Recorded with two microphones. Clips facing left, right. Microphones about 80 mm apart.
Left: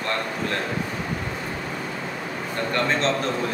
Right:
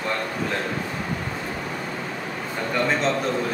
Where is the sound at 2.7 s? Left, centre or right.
Centre.